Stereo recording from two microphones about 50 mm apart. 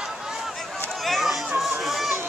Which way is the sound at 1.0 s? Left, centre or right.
Centre.